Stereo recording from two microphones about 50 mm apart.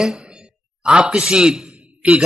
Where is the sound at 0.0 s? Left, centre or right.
Centre.